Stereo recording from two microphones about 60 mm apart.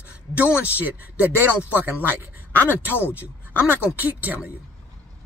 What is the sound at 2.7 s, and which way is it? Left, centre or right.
Speech, right.